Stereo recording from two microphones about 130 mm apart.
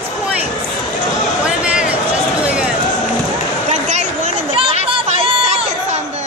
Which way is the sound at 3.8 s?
65° right (ahead or behind).